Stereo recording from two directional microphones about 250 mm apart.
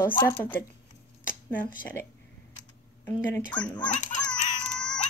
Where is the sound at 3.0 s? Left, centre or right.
Centre.